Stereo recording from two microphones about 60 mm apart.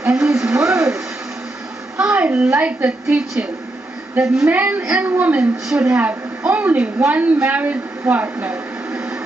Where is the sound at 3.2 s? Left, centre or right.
Centre.